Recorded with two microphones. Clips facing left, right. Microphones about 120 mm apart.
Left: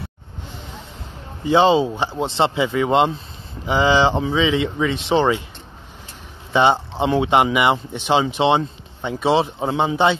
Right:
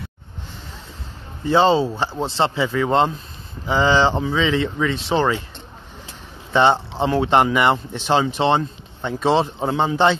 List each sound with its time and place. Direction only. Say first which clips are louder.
1.4 s speech: left 1 dB; 15° left (ahead or behind)
6.5 s speech: even; 15° left (ahead or behind)